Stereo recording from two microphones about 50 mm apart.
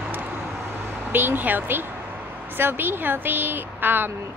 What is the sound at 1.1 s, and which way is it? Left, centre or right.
Speech, right.